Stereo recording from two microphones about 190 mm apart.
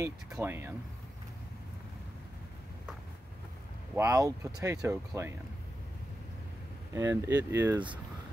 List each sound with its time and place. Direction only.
0.0 s speech: 15° right (ahead or behind)
3.9 s speech: 15° right (ahead or behind)
6.9 s speech: 15° right (ahead or behind)